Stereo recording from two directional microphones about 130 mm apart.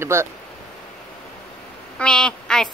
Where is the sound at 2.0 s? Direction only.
5° left (ahead or behind).